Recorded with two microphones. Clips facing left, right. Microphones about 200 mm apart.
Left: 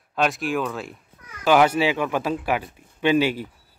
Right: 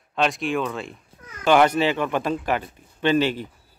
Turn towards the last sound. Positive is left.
turn(degrees=10)  # may be behind; listen again after turning